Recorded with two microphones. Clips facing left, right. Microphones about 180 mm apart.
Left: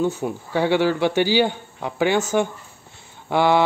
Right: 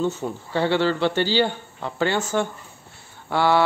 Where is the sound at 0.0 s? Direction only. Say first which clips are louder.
Left 2 dB; 10° left (ahead or behind).